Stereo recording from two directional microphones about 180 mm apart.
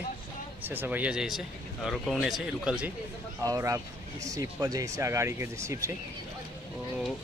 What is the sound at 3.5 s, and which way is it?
Speech, 15° right (ahead or behind).